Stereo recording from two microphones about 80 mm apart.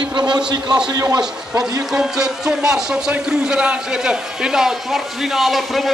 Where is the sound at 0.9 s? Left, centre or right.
Right.